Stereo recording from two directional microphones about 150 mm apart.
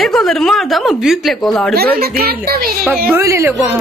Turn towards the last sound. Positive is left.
turn(degrees=-15)  # may be behind; listen again after turning